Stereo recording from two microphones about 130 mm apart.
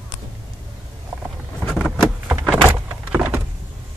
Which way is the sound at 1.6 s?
5° left (ahead or behind).